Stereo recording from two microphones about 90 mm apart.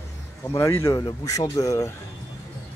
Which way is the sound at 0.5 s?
30° left (ahead or behind).